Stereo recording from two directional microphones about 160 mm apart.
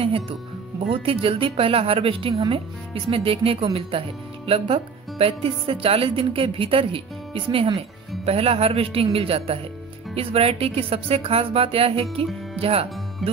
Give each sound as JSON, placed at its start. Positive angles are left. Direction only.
{"t": 0.0, "sound": "speech", "side_deg": -35}